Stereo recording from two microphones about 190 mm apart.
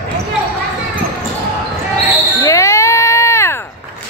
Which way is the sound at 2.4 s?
15° left (ahead or behind).